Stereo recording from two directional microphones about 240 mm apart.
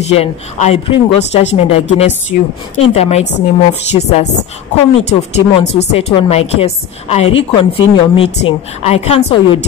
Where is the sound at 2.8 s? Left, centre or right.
Left.